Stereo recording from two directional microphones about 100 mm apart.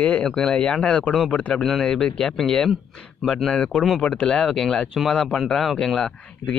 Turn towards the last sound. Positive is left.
turn(degrees=10)  # may be behind; listen again after turning